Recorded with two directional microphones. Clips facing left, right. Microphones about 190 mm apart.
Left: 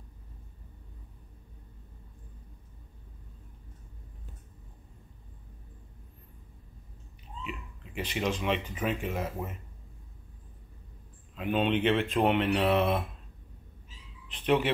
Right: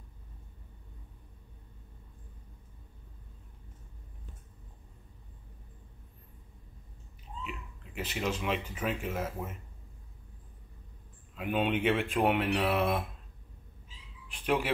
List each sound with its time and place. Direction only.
7.4 s a sound: 5° right (ahead or behind)
8.8 s speech: 5° right (ahead or behind)
11.3 s speech: 10° right (ahead or behind)
14.3 s speech: 5° right (ahead or behind)